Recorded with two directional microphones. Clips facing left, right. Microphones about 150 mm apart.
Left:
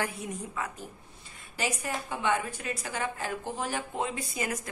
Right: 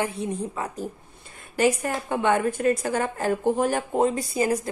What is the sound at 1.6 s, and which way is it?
A woman's voice, 55° right (ahead or behind).